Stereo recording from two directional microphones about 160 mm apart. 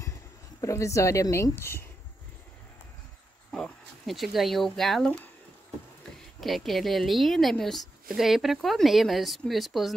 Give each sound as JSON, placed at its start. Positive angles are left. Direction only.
{"t": 0.6, "sound": "speech", "side_deg": 20}
{"t": 3.5, "sound": "speech", "side_deg": 0}
{"t": 6.4, "sound": "a woman's voice", "side_deg": 0}